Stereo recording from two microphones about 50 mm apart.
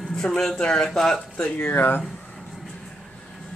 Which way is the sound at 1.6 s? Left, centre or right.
Left.